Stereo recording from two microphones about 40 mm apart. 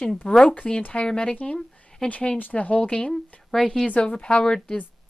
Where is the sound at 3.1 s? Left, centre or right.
Centre.